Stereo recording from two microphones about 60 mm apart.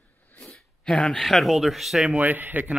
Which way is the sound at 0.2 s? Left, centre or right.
Left.